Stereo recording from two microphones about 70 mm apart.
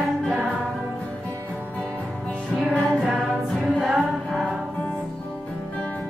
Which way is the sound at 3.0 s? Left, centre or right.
Centre.